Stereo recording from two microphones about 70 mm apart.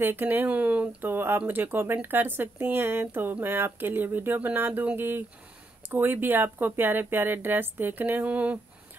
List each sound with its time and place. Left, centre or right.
0.0 s speech: right